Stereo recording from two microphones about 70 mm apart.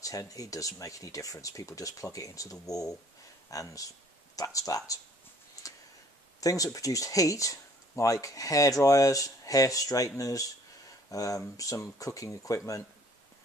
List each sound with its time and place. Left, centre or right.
0.0 s speech: left
5.6 s a sound: left
6.4 s speech: left